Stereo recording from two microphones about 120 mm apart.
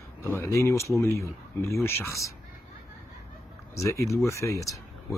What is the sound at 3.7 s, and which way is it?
Speech, 25° left (ahead or behind).